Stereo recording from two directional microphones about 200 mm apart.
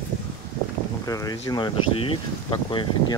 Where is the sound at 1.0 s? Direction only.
15° left (ahead or behind).